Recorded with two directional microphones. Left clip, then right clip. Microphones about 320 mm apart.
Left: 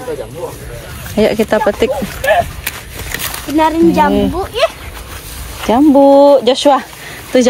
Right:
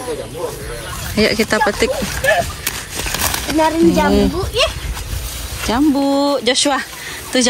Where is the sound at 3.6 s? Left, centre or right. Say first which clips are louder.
Left 4 dB; left.